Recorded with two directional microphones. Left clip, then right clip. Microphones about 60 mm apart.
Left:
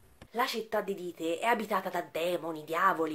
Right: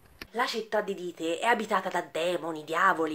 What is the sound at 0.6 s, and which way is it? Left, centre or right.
Speech, centre.